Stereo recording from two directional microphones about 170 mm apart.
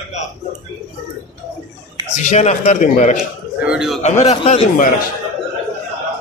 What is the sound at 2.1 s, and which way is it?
A man's voice, 45° left (ahead or behind).